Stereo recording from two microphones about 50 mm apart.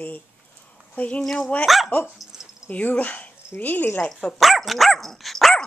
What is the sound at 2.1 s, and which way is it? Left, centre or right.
Cricket, centre.